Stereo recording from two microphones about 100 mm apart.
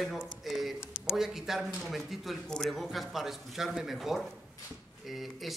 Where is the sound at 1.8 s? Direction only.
5° right (ahead or behind).